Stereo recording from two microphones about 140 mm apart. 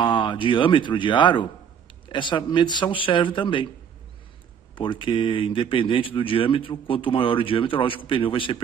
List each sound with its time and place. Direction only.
0.0 s speech: 35° left (ahead or behind)
4.7 s speech: 40° left (ahead or behind)